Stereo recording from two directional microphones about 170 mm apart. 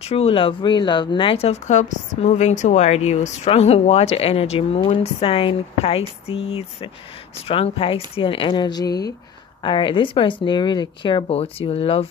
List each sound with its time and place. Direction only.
0.0 s speech: 35° left (ahead or behind)